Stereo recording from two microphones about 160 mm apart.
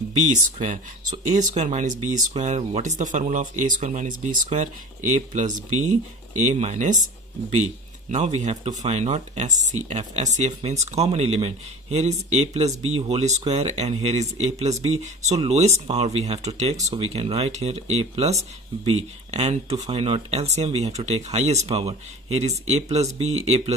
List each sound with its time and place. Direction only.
0.3 s speech: 50° right (ahead or behind)
8.1 s speech: 45° right (ahead or behind)